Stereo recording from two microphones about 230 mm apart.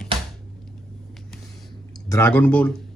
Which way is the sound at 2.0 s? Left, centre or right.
Centre.